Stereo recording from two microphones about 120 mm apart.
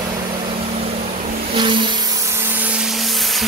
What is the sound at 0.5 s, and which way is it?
Vehicle, 55° right (ahead or behind).